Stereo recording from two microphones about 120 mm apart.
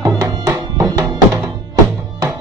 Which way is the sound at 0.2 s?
30° right (ahead or behind).